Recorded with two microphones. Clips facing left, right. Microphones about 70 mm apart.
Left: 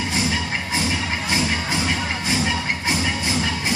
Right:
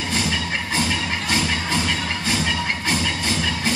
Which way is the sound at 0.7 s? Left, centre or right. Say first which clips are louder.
Even; centre.